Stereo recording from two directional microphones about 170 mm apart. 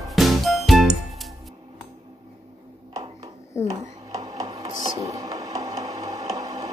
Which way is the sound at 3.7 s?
20° right (ahead or behind).